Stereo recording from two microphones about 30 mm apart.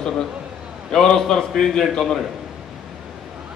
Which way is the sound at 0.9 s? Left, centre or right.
Left.